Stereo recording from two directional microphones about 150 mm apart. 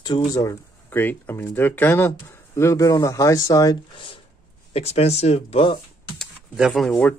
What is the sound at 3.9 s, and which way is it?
Speech, 35° left (ahead or behind).